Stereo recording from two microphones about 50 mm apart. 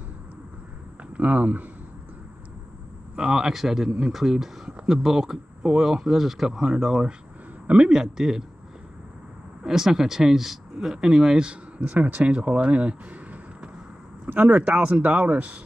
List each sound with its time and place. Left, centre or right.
1.1 s speech: right
3.2 s speech: centre
9.6 s speech: centre
11.8 s speech: right